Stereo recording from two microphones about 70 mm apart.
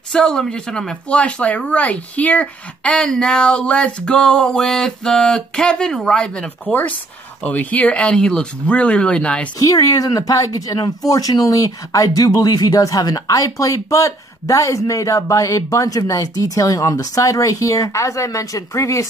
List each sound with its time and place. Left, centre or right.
0.1 s speech: centre
9.7 s speech: left